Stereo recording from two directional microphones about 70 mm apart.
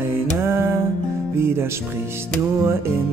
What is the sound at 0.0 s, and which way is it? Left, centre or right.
Mantra, right.